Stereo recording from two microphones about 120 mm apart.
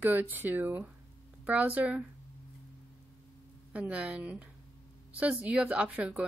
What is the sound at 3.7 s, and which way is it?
Speech, 10° right (ahead or behind).